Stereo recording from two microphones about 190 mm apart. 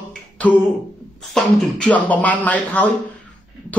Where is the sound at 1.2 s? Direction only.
Centre (ahead or behind).